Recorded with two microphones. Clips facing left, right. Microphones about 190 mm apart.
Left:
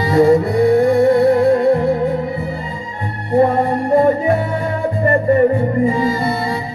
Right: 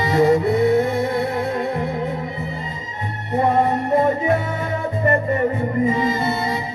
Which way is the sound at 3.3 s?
20° right (ahead or behind).